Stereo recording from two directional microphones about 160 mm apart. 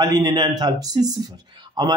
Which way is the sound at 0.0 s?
25° right (ahead or behind).